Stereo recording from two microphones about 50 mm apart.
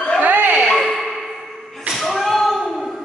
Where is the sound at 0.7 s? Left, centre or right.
Centre.